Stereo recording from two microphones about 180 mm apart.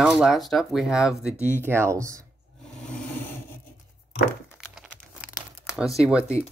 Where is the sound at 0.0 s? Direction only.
Centre (ahead or behind).